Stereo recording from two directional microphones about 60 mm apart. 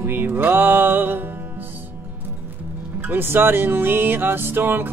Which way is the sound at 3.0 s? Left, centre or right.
Right.